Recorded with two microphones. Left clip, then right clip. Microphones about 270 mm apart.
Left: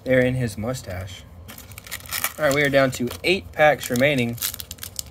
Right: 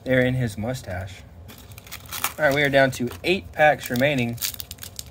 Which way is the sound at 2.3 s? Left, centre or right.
Centre.